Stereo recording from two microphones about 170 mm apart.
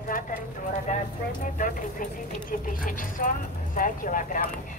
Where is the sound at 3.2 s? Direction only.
50° left (ahead or behind).